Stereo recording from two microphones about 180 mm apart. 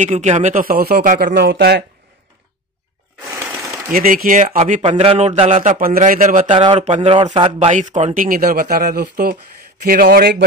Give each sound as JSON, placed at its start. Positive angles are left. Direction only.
{"t": 0.0, "sound": "a man's voice", "side_deg": -40}
{"t": 1.3, "sound": "speech", "side_deg": -65}
{"t": 3.9, "sound": "a man's voice", "side_deg": -50}
{"t": 6.5, "sound": "speech", "side_deg": -25}
{"t": 6.8, "sound": "speech", "side_deg": -40}
{"t": 7.5, "sound": "a man's voice", "side_deg": -45}